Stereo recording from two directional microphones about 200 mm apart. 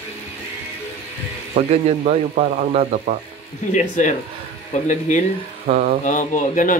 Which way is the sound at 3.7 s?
40° left (ahead or behind).